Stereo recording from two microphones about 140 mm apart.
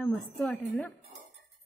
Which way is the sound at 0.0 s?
10° left (ahead or behind).